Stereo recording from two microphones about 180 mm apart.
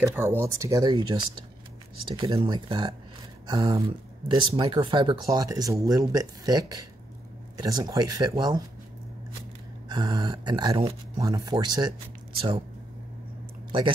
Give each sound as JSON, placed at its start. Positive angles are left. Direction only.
{"t": 0.0, "sound": "speech", "side_deg": -10}
{"t": 2.0, "sound": "speech", "side_deg": -30}
{"t": 9.8, "sound": "speech", "side_deg": -25}
{"t": 13.7, "sound": "speech", "side_deg": -30}